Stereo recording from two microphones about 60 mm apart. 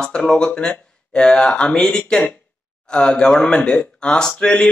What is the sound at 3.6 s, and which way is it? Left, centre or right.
Speech, left.